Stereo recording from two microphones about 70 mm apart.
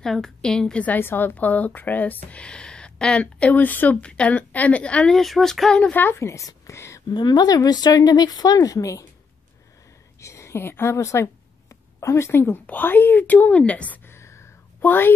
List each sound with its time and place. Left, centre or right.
0.0 s a woman's voice: centre
0.8 s speech: left
5.1 s speech: centre
5.8 s speech: left
6.1 s a woman's voice: left
7.1 s speech: left
10.2 s a woman's voice: left
11.7 s a sound: left
12.6 s speech: left
14.0 s a sound: left
14.8 s a woman's voice: left